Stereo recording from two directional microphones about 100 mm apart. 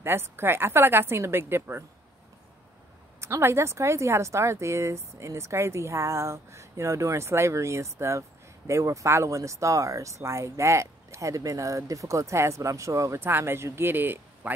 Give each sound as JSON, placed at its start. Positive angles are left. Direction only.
{"t": 0.0, "sound": "speech", "side_deg": -25}
{"t": 3.2, "sound": "speech", "side_deg": -25}